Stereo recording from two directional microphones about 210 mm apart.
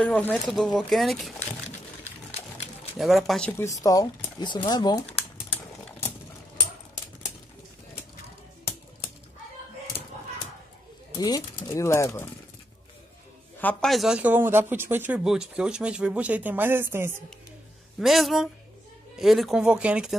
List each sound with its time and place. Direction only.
0.0 s speech: 5° left (ahead or behind)
3.0 s speech: centre (ahead or behind); by 5.1 s 20° left (ahead or behind)
11.1 s speech: 15° left (ahead or behind)
13.6 s speech: 5° left (ahead or behind); by 17.1 s 10° right (ahead or behind)
17.9 s speech: centre (ahead or behind)